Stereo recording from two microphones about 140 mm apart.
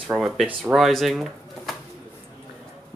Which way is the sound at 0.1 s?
10° right (ahead or behind).